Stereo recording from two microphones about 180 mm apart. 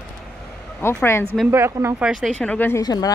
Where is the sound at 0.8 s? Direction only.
15° left (ahead or behind).